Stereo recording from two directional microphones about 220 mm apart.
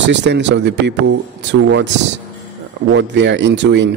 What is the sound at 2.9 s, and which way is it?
Speech, 55° right (ahead or behind).